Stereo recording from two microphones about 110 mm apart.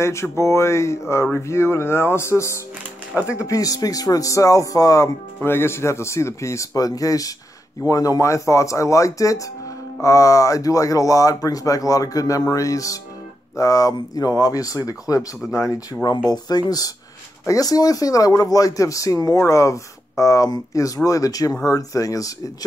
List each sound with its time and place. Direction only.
0.0 s speech: 25° left (ahead or behind)
15.4 s speech: 5° right (ahead or behind)
15.7 s speech: 35° left (ahead or behind)